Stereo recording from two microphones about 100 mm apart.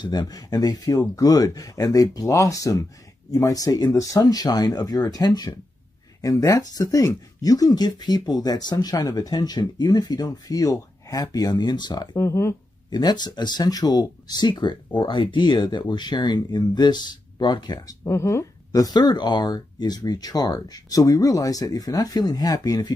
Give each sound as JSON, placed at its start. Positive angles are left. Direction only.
{"t": 0.0, "sound": "speech", "side_deg": 45}
{"t": 12.2, "sound": "speech", "side_deg": 25}
{"t": 12.9, "sound": "speech", "side_deg": 45}